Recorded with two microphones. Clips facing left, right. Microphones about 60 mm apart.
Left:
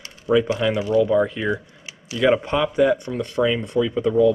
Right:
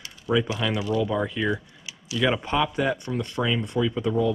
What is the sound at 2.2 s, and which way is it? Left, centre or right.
Speech, left.